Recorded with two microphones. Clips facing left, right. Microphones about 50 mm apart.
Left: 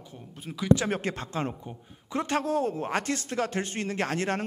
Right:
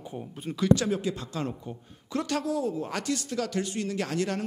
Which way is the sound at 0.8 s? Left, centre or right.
Left.